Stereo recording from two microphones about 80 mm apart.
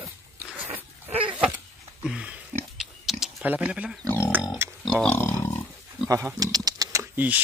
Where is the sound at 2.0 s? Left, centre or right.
Centre.